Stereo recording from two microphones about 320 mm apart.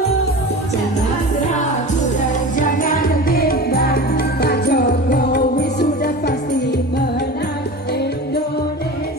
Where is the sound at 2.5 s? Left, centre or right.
Left.